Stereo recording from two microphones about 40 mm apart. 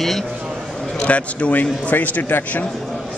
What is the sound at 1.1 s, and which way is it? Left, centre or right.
A man's voice, left.